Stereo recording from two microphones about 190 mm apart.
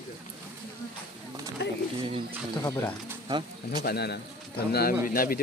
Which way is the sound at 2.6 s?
15° left (ahead or behind).